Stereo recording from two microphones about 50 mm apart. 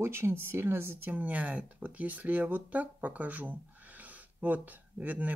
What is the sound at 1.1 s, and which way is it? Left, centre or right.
Speech, right.